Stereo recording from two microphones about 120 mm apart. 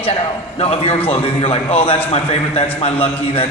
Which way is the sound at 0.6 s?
55° left (ahead or behind).